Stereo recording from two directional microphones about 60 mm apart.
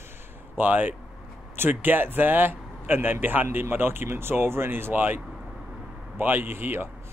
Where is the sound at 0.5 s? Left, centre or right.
Right.